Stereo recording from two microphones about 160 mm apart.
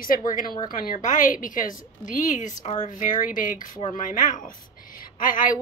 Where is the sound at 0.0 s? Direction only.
60° left (ahead or behind).